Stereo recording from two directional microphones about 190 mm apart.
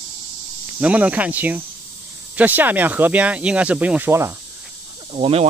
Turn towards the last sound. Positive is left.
turn(degrees=-30)  # may be behind; listen again after turning